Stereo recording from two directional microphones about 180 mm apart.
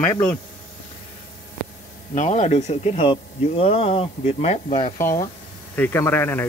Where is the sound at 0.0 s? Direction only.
15° left (ahead or behind).